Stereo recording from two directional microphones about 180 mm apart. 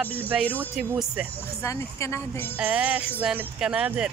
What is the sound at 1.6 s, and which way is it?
Speech, 15° left (ahead or behind).